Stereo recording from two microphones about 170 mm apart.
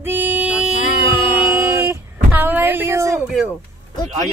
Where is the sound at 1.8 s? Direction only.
15° right (ahead or behind).